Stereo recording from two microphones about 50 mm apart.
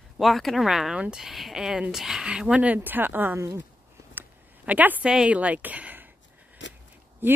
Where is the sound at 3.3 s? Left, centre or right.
Right.